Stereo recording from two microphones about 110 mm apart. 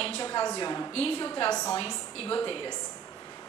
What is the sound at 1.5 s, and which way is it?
Speech, 30° left (ahead or behind).